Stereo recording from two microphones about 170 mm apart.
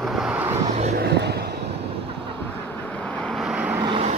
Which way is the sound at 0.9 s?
75° right (ahead or behind).